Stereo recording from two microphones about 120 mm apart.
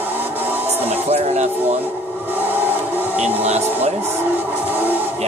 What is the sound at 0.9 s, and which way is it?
Speech, 65° right (ahead or behind).